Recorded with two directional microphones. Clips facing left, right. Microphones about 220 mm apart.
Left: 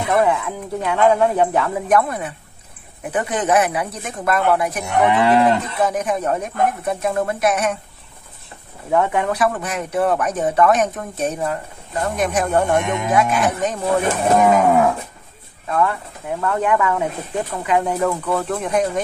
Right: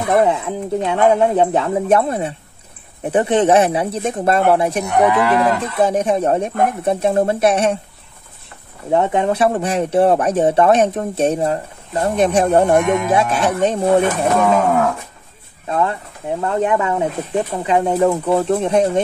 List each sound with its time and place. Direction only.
0.0 s speech: 25° right (ahead or behind)
5.1 s moo: 25° left (ahead or behind)
5.8 s speech: 30° right (ahead or behind)
8.9 s speech: 25° right (ahead or behind)
15.7 s speech: 25° right (ahead or behind)